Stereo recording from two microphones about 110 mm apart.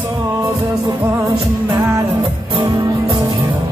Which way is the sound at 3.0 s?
45° right (ahead or behind).